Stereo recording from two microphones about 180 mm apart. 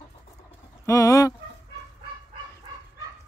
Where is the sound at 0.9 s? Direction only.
15° left (ahead or behind).